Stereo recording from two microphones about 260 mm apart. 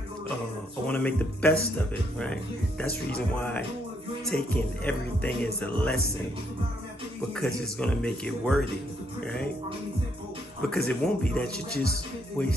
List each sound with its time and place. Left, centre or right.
0.8 s speech: centre
3.3 s speech: centre
7.3 s speech: centre
10.7 s speech: centre
11.7 s speech: left
12.4 s speech: centre